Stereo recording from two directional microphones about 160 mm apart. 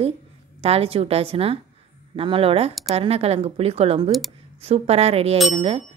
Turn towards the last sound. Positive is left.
turn(degrees=-35)  # may be behind; listen again after turning